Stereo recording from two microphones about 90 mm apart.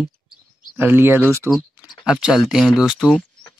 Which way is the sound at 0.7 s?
25° right (ahead or behind).